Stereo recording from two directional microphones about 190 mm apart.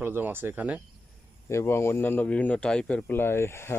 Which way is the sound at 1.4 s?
15° left (ahead or behind).